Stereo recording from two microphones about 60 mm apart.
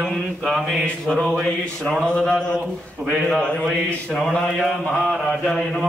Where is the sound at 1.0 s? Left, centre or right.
Centre.